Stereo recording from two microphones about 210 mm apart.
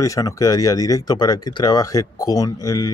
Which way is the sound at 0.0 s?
15° left (ahead or behind).